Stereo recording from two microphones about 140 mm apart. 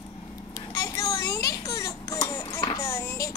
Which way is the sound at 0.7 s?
25° left (ahead or behind).